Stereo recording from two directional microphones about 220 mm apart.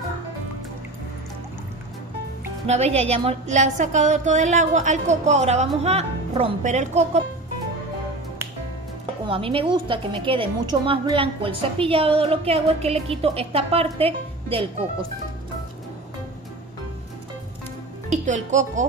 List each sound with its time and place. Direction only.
2.6 s a woman's voice: 30° right (ahead or behind)
9.3 s a woman's voice: 25° right (ahead or behind)
18.1 s speech: 35° right (ahead or behind)